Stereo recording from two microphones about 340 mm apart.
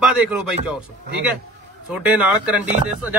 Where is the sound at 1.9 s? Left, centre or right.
Centre.